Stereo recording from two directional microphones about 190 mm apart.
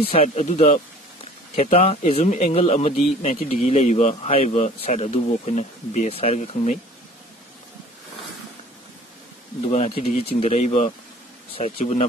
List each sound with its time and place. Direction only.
0.1 s speech: 35° left (ahead or behind)
9.7 s speech: 35° left (ahead or behind)